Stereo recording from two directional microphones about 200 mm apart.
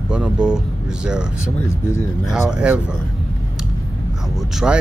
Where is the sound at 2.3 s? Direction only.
5° right (ahead or behind).